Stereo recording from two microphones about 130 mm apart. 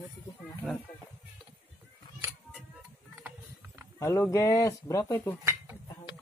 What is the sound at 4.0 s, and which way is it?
Speech, 20° left (ahead or behind).